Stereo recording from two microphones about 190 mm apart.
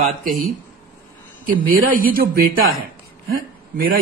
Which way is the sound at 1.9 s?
50° right (ahead or behind).